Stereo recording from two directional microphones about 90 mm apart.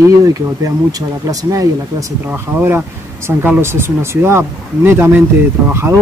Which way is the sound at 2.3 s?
25° right (ahead or behind).